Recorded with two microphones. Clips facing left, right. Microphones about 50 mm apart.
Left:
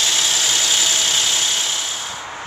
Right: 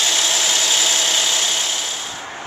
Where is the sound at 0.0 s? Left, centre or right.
Centre.